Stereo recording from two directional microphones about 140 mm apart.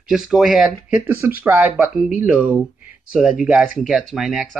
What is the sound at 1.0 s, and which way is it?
Speech, 15° right (ahead or behind).